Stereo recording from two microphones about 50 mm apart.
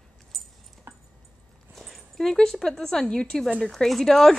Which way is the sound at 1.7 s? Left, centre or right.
Centre.